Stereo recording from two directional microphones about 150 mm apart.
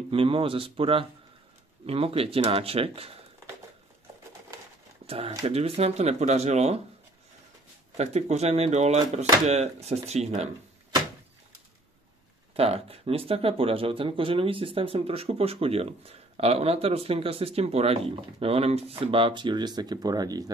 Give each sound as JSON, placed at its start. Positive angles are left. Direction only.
{"t": 0.1, "sound": "speech", "side_deg": -35}
{"t": 5.0, "sound": "speech", "side_deg": -40}
{"t": 8.0, "sound": "speech", "side_deg": -45}
{"t": 12.5, "sound": "speech", "side_deg": -40}